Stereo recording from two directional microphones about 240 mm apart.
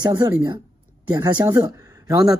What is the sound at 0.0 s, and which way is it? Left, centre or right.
Speech, centre.